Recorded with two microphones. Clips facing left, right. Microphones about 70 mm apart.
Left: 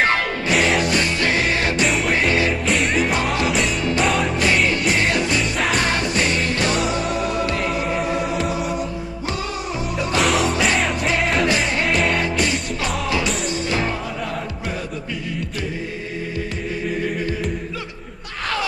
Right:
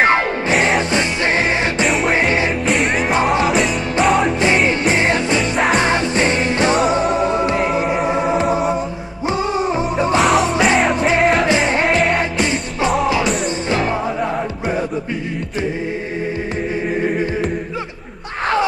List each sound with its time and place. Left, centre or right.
0.0 s music: right
1.9 s music: centre
4.6 s music: right
8.5 s a capella: right
9.9 s music: right
10.2 s music: centre
11.4 s music: right
11.8 s music: centre
12.2 s music: right
17.0 s music: right